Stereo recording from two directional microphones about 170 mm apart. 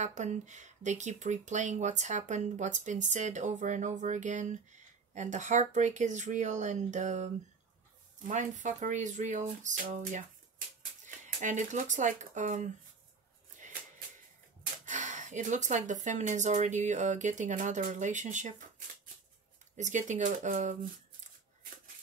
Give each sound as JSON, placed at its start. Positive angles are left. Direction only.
{"t": 0.0, "sound": "speech", "side_deg": -45}
{"t": 8.3, "sound": "speech", "side_deg": -45}
{"t": 13.6, "sound": "a sound", "side_deg": -50}
{"t": 14.9, "sound": "speech", "side_deg": -45}
{"t": 19.8, "sound": "speech", "side_deg": -45}